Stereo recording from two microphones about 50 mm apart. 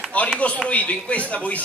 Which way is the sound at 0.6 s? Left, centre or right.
Left.